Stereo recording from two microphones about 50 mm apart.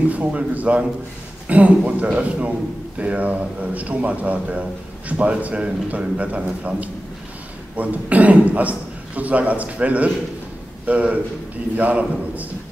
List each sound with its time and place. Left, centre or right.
0.1 s a man's voice: right
7.7 s a man's voice: right